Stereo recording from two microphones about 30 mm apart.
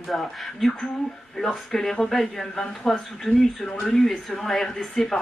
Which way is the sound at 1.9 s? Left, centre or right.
Centre.